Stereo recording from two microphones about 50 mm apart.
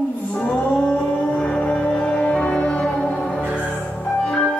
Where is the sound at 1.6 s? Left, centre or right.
Left.